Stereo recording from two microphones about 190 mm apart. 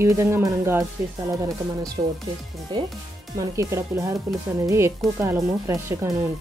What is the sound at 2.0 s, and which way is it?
Speech, 25° right (ahead or behind).